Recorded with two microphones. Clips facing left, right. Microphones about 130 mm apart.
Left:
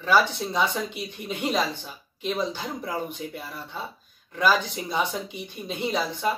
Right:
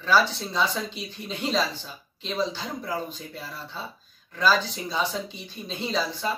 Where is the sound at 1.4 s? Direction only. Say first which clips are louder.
Even; 15° left (ahead or behind).